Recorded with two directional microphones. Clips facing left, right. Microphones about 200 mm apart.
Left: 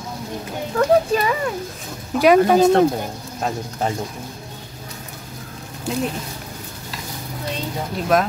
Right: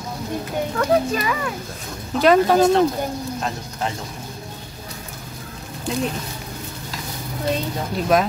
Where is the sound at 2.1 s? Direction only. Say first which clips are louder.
Left 1 dB; 10° left (ahead or behind).